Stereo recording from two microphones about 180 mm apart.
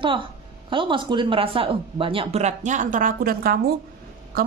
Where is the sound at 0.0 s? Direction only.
30° right (ahead or behind).